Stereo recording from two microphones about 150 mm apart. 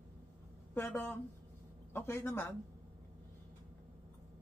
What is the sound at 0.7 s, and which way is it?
A man's voice, 15° left (ahead or behind).